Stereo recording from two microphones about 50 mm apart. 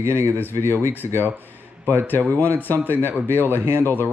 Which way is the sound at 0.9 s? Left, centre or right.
Left.